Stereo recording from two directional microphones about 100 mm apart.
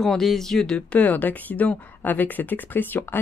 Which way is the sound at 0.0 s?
Centre (ahead or behind).